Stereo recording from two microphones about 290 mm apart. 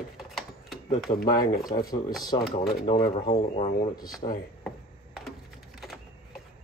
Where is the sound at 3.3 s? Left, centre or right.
Left.